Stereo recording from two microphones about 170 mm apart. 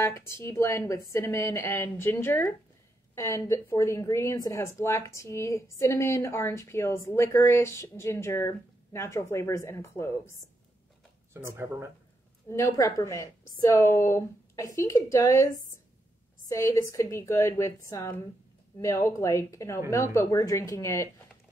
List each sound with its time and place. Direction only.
0.0 s speech: 15° left (ahead or behind)
11.4 s speech: 15° right (ahead or behind)
12.4 s speech: 15° left (ahead or behind)
16.4 s speech: 20° left (ahead or behind)